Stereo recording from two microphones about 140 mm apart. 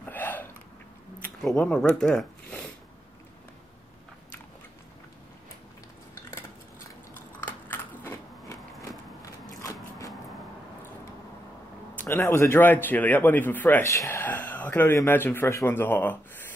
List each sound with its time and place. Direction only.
0.0 s hiccup: 10° left (ahead or behind)
1.2 s speech: 5° left (ahead or behind)
7.3 s biting: 15° left (ahead or behind)
9.6 s a sound: 25° left (ahead or behind)
11.9 s a man's voice: 15° left (ahead or behind)